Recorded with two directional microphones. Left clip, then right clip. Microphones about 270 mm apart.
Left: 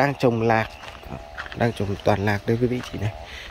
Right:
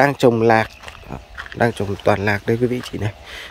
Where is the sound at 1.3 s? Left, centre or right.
Centre.